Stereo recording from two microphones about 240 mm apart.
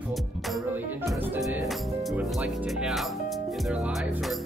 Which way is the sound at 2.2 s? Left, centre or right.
Centre.